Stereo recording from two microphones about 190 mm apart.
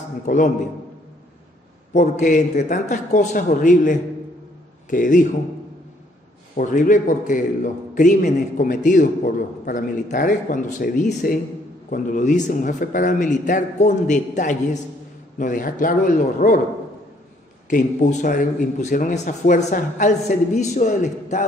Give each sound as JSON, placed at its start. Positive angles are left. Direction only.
{"t": 0.2, "sound": "a man's voice", "side_deg": 40}
{"t": 2.0, "sound": "a man's voice", "side_deg": 40}
{"t": 6.5, "sound": "a man's voice", "side_deg": 45}
{"t": 17.6, "sound": "a man's voice", "side_deg": 40}